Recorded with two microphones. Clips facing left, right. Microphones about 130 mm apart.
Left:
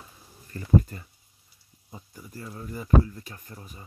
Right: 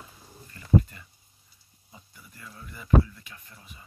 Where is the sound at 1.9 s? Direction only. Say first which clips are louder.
Left 8 dB; 40° left (ahead or behind).